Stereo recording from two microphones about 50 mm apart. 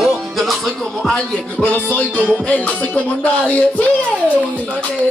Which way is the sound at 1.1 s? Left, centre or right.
Left.